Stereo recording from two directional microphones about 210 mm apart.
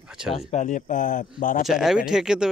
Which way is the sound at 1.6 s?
Centre (ahead or behind).